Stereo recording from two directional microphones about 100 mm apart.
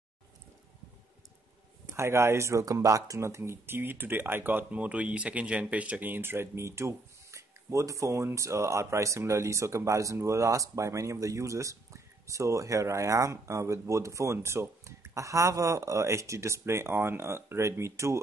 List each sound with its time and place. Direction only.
2.0 s speech: 25° right (ahead or behind)